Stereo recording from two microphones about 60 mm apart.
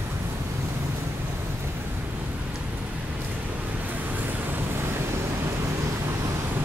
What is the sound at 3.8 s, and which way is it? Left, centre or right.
Vehicle, right.